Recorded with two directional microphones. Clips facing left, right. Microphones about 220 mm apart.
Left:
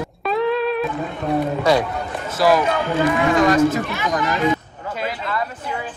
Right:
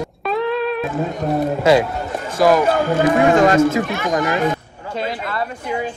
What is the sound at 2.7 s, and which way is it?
Speech, 40° right (ahead or behind).